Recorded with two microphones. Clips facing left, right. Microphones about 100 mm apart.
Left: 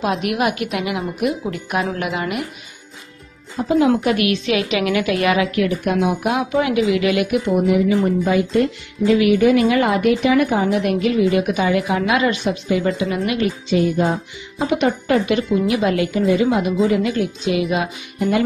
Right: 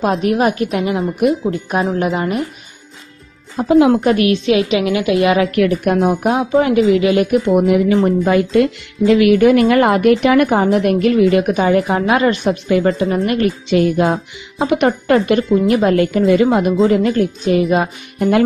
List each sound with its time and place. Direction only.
0.0 s speech: 35° right (ahead or behind)
3.6 s speech: 60° right (ahead or behind)
3.9 s a woman's voice: 35° right (ahead or behind)
5.5 s speech: 60° right (ahead or behind)
5.9 s speech: 40° right (ahead or behind)
7.0 s speech: 30° right (ahead or behind)
7.2 s speech: 50° right (ahead or behind)
11.5 s speech: 40° right (ahead or behind)
13.7 s a woman's voice: 75° right (ahead or behind); by 15.4 s 55° right (ahead or behind)
15.6 s a woman's voice: 40° right (ahead or behind)
16.1 s speech: 60° right (ahead or behind); by 18.3 s 40° right (ahead or behind)